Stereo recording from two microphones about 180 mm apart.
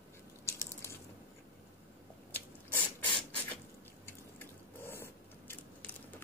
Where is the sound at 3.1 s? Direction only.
25° left (ahead or behind).